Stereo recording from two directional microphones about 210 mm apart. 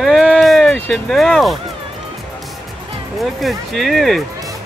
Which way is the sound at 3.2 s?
Centre (ahead or behind).